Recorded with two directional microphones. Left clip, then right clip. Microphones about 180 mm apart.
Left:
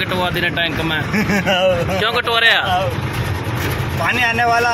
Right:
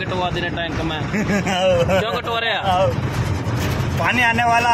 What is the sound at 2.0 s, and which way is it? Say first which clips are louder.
Speech: left 5 dB; centre (ahead or behind).